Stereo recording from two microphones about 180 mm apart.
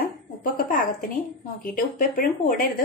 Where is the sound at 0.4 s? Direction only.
50° left (ahead or behind).